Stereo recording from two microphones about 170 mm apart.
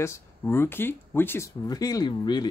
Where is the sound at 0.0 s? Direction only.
15° left (ahead or behind).